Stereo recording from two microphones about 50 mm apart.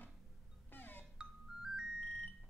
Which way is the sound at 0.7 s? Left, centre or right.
Left.